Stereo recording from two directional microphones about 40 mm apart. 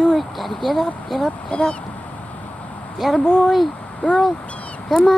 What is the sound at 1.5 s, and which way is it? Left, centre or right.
Speech, left.